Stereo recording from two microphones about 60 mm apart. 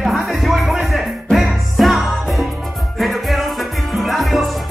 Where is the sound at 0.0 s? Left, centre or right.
Centre.